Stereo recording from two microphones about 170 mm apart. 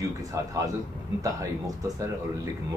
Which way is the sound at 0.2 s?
20° right (ahead or behind).